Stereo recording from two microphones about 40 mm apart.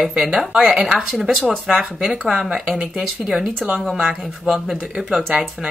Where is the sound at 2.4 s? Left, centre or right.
Centre.